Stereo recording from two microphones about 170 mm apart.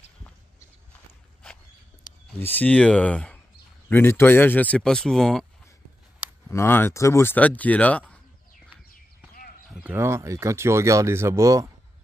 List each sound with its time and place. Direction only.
2.4 s speech: 10° left (ahead or behind)
6.5 s speech: 15° left (ahead or behind)
9.8 s speech: 15° right (ahead or behind)